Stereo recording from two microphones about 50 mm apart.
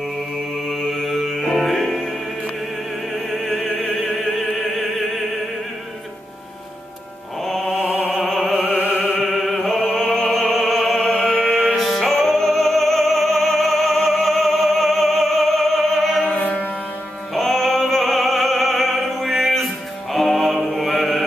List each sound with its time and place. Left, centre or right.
0.7 s mantra: centre
1.5 s music: centre
3.3 s opera: centre
3.9 s music: centre
7.4 s music: centre
7.8 s opera: right
8.2 s opera: centre
8.7 s opera: right
9.2 s opera: centre
10.5 s music: centre
11.0 s music: centre
11.7 s music: centre
16.3 s music: left
17.3 s opera: centre